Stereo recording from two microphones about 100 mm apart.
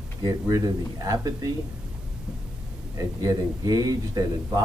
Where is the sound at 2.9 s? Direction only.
40° right (ahead or behind).